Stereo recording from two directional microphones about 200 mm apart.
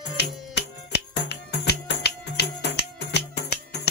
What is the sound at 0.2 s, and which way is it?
Music, 55° left (ahead or behind).